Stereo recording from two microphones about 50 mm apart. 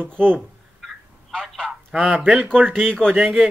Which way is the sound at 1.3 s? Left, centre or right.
Centre.